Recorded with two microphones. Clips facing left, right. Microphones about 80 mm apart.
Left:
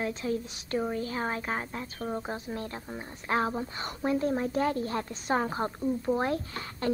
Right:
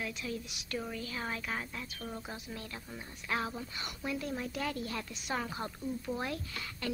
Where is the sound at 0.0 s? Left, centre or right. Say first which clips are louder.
Left 8 dB; left.